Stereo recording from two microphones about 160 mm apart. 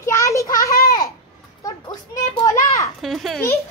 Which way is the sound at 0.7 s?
70° left (ahead or behind).